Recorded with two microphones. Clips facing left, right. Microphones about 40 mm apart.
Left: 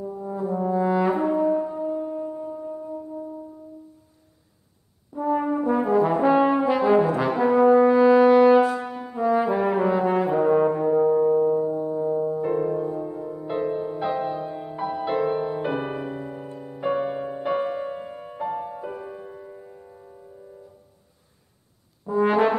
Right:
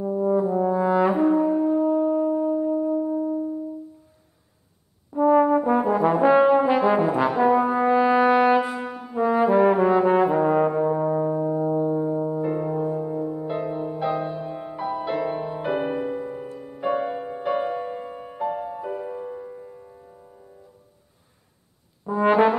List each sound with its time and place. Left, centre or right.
0.0 s brass instrument: right
0.4 s brass instrument: centre
1.7 s wind instrument: right
5.1 s brass instrument: right
5.8 s brass instrument: centre
9.1 s trombone: centre
11.6 s music: right
12.4 s music: centre
22.0 s brass instrument: centre